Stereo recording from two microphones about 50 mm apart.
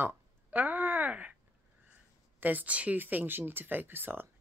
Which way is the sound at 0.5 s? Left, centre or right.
Right.